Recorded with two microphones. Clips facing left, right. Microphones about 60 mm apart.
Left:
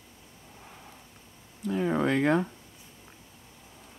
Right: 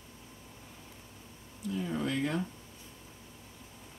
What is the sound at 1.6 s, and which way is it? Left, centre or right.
Speech, left.